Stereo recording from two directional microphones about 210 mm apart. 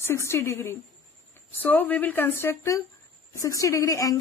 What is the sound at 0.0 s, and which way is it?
Speech, 10° left (ahead or behind).